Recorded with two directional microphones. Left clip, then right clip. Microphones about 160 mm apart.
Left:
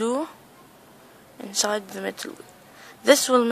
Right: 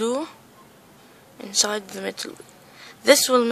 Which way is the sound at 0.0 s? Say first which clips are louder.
Right 1 dB; centre (ahead or behind).